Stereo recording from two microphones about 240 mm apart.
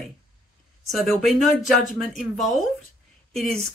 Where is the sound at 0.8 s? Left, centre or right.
Centre.